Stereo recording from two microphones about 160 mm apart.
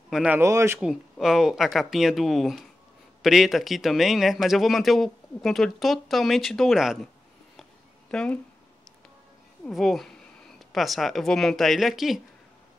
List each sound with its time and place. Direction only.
0.1 s speech: 5° right (ahead or behind)
0.4 s speech: 20° right (ahead or behind)
0.7 s a man's voice: centre (ahead or behind)
8.1 s speech: 5° left (ahead or behind)
9.7 s a man's voice: centre (ahead or behind)